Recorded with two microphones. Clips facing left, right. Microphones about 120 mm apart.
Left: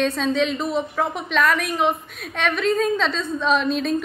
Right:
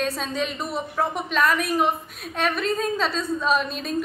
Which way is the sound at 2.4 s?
5° right (ahead or behind).